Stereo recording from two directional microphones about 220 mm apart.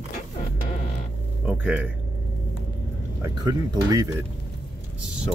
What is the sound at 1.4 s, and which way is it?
Speech, 5° right (ahead or behind).